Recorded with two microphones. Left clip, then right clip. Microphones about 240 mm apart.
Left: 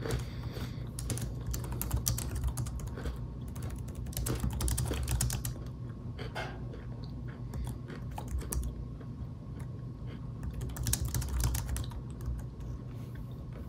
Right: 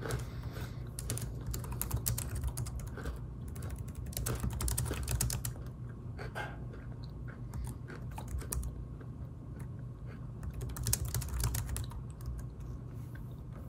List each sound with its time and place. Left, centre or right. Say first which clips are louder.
0.0 s vehicle: left 2 dB; centre
1.0 s typing: left 2 dB; centre
4.1 s typing: left 2 dB; centre
10.9 s typing: left 1 dB; centre